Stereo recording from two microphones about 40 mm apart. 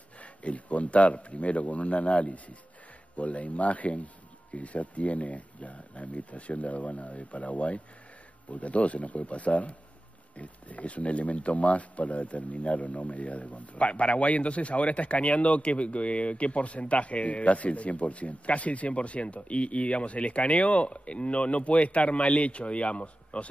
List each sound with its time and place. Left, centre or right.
0.2 s speech: left